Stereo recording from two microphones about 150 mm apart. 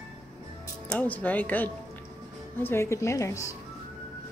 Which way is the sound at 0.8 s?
10° left (ahead or behind).